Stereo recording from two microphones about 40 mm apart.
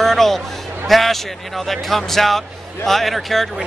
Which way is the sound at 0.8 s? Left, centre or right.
Centre.